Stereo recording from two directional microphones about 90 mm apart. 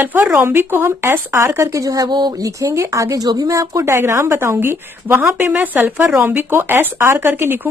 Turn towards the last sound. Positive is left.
turn(degrees=-20)  # may be behind; listen again after turning